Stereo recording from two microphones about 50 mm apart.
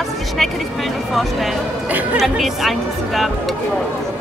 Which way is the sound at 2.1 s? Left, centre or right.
Centre.